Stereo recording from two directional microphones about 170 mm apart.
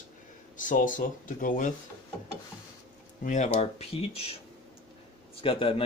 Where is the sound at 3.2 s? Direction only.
45° left (ahead or behind).